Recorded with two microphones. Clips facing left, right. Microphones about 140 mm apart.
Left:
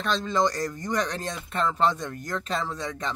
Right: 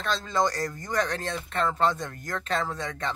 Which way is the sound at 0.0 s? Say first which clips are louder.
Left 2 dB; 20° left (ahead or behind).